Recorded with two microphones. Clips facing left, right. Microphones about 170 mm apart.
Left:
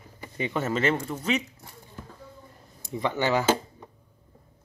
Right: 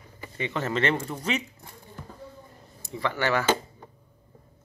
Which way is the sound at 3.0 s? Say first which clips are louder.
Left 1 dB; 20° left (ahead or behind).